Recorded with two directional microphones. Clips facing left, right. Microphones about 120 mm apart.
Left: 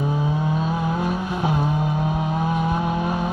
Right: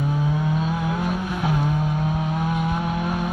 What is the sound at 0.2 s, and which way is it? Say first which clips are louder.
Vehicle: even; 25° left (ahead or behind).